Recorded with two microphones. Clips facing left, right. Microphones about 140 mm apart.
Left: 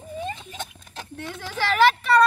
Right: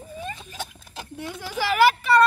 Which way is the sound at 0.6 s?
5° right (ahead or behind).